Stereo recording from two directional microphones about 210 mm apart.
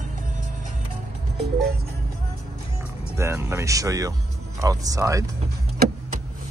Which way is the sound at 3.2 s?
10° right (ahead or behind).